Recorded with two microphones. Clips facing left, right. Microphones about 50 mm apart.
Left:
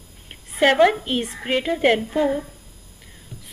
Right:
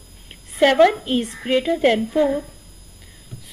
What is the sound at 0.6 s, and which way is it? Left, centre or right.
Speech, centre.